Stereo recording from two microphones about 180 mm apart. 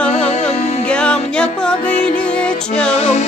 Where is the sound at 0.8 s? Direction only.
5° left (ahead or behind).